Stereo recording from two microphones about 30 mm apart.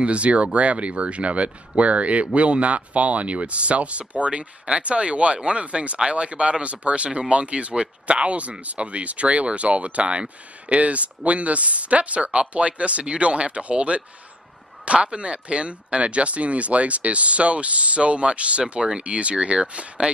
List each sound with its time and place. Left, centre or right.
0.0 s speech: right
18.7 s speech: right
19.0 s speech: right